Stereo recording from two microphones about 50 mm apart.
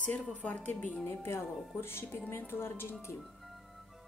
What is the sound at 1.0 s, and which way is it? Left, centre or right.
A woman's voice, left.